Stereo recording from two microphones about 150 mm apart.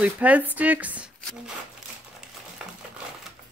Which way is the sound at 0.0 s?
10° right (ahead or behind).